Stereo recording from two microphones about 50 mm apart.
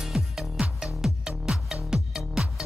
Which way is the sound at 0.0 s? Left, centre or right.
Centre.